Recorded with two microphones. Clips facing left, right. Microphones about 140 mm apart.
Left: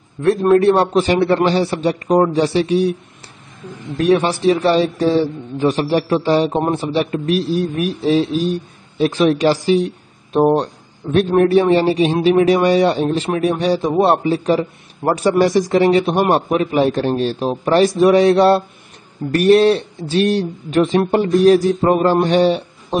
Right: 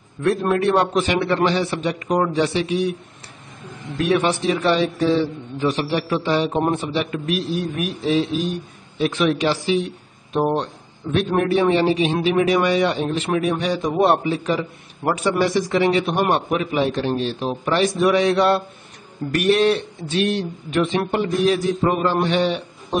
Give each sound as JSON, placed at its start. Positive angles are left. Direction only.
{"t": 0.2, "sound": "a man's voice", "side_deg": 35}